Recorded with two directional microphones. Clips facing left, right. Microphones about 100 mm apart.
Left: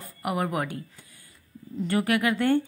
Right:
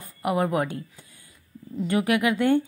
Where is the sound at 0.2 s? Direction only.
25° right (ahead or behind).